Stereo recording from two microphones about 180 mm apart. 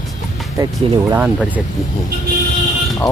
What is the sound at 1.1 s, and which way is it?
Speech, 10° right (ahead or behind).